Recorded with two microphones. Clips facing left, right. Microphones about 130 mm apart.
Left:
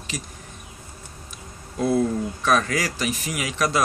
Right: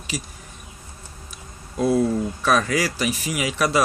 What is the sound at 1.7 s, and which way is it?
Speech, 10° right (ahead or behind).